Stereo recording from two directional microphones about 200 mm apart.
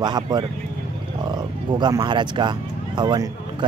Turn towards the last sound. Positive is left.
turn(degrees=-20)  # may be behind; listen again after turning